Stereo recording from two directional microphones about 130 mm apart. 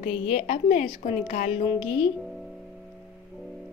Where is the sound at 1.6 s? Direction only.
40° left (ahead or behind).